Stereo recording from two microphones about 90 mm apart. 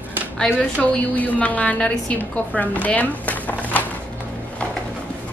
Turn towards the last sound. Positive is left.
turn(degrees=20)  # may be behind; listen again after turning